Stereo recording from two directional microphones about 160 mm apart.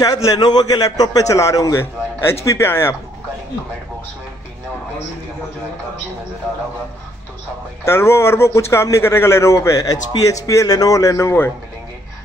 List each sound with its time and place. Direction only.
0.0 s a man's voice: 20° left (ahead or behind)
7.8 s a man's voice: 15° left (ahead or behind)